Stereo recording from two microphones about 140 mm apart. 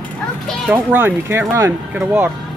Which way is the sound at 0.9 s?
15° right (ahead or behind).